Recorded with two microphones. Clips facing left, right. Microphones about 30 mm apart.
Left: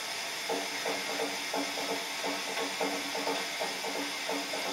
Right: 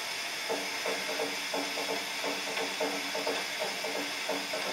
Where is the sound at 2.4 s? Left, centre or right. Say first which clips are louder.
Even; centre.